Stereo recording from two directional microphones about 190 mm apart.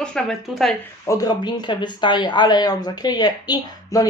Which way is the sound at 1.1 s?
20° left (ahead or behind).